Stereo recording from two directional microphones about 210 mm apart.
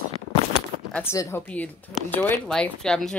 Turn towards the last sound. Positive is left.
turn(degrees=0)  # may be behind; listen again after turning